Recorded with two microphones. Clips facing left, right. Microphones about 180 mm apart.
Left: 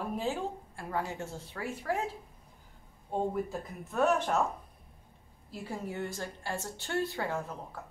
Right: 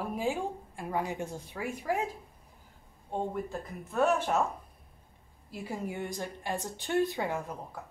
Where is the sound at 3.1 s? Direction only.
5° left (ahead or behind).